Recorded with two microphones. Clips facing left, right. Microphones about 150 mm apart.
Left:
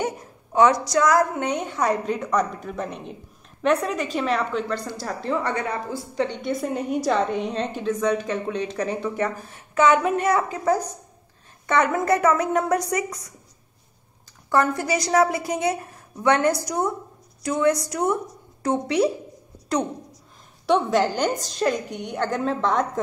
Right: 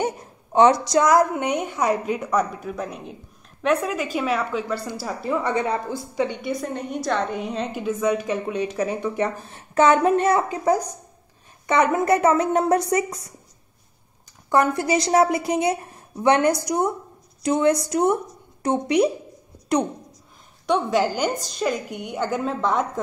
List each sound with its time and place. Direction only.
0.0 s a woman's voice: 25° right (ahead or behind)
6.5 s a woman's voice: 5° left (ahead or behind); by 9.3 s 15° right (ahead or behind)
9.5 s a woman's voice: 35° right (ahead or behind)
14.5 s a woman's voice: 20° right (ahead or behind)
20.6 s a woman's voice: centre (ahead or behind)